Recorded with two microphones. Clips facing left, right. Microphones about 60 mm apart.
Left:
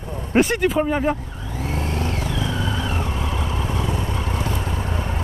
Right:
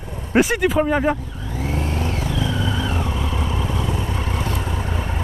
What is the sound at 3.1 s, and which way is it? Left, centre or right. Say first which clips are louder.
Vehicle: right 1 dB; left.